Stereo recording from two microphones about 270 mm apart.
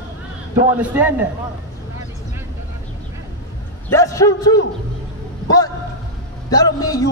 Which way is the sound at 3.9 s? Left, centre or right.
Centre.